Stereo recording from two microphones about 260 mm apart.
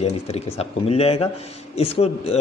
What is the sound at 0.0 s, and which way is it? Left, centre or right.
A man's voice, left.